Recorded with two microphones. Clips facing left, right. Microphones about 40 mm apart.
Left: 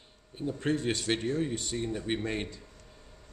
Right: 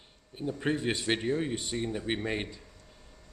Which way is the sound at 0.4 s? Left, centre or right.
Centre.